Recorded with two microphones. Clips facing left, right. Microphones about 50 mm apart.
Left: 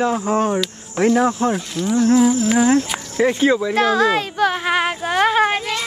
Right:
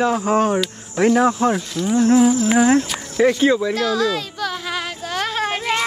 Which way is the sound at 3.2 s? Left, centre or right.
Left.